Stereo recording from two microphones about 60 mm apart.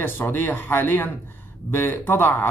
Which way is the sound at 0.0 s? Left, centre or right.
Left.